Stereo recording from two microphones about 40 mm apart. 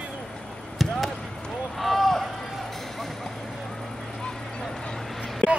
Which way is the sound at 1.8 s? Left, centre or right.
Centre.